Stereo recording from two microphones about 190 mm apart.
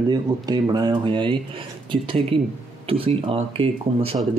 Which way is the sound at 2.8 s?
30° right (ahead or behind).